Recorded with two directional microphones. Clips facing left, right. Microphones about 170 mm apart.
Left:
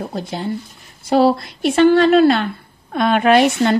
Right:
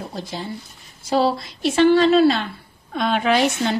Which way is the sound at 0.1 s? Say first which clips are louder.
Left 6 dB; 55° left (ahead or behind).